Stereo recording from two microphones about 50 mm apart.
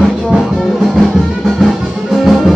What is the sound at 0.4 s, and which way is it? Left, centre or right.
Music, centre.